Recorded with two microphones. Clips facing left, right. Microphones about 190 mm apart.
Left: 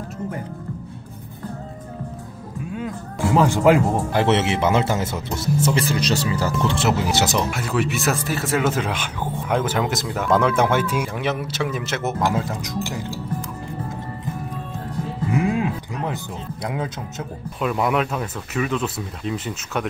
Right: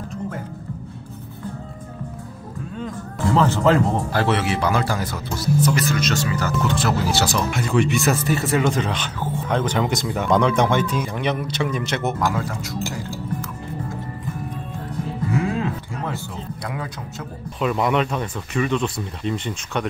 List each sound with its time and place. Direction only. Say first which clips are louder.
2.7 s speech: left 1 dB; 10° left (ahead or behind)
7.5 s speech: right 3 dB; 5° left (ahead or behind)
12.4 s speech: left 1 dB; 20° left (ahead or behind)
12.9 s music: left 1 dB; 20° left (ahead or behind)
15.3 s music: left 2 dB; 15° left (ahead or behind)
16.6 s speech: left 6 dB; 20° left (ahead or behind)
17.6 s speech: right 1 dB; centre (ahead or behind)